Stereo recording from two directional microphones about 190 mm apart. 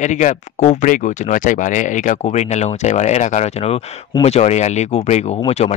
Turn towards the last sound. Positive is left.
turn(degrees=35)  # may be behind; listen again after turning